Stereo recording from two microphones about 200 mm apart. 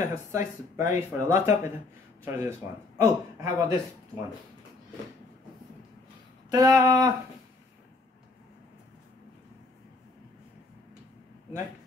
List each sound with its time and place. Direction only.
0.0 s speech: 15° right (ahead or behind)
6.5 s speech: 15° right (ahead or behind)